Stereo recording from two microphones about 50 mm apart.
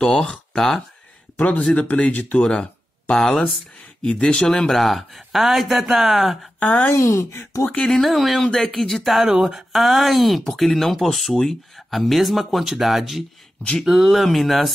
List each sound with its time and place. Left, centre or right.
0.0 s speech: centre
1.7 s speech: left
2.4 s speech: centre
4.5 s speech: centre
6.6 s a woman's voice: left
6.9 s speech: left
7.9 s speech: centre